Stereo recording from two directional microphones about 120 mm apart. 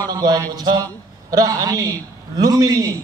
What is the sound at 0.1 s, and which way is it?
A man's voice, 35° right (ahead or behind).